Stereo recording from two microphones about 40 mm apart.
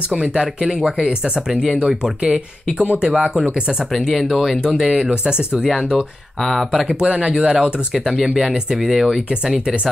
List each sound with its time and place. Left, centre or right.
0.1 s speech: right
0.7 s speech: centre; by 3.4 s right
4.2 s speech: centre
5.1 s speech: right
5.6 s speech: centre
6.4 s speech: centre
6.9 s speech: right
8.8 s speech: centre